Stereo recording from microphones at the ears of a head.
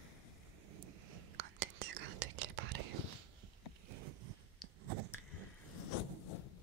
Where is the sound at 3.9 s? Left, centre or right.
Right.